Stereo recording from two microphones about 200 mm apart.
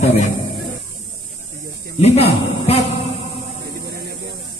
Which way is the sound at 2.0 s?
30° left (ahead or behind).